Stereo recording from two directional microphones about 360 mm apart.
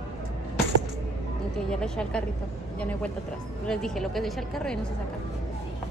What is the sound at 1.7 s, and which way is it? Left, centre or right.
A woman's voice, centre.